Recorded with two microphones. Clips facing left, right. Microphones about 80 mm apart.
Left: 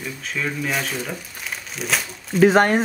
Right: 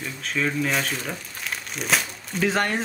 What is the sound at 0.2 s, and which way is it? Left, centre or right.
Speech, centre.